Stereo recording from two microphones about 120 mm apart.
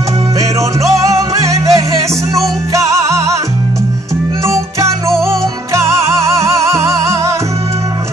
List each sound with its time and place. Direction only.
0.4 s music: 25° right (ahead or behind)
4.5 s music: 25° right (ahead or behind)
5.1 s music: 5° left (ahead or behind)
5.7 s music: 25° right (ahead or behind)